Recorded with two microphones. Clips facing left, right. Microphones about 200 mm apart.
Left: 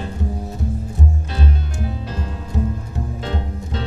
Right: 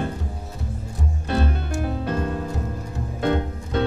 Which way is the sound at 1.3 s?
55° right (ahead or behind).